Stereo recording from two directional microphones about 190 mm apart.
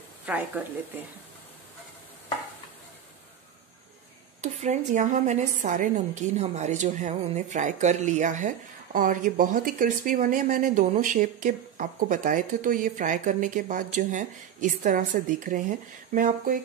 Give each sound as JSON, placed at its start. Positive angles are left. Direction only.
{"t": 0.2, "sound": "speech", "side_deg": -10}
{"t": 4.4, "sound": "a woman's voice", "side_deg": -40}